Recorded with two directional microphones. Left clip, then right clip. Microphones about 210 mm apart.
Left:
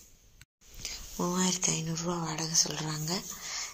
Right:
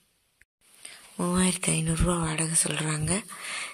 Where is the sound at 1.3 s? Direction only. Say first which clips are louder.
Right 3 dB; 50° right (ahead or behind).